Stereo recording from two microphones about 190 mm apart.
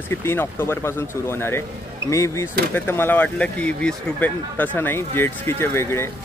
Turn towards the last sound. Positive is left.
turn(degrees=15)  # may be behind; listen again after turning